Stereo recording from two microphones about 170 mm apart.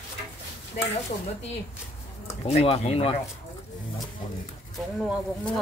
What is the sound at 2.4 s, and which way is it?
Speech, 35° left (ahead or behind).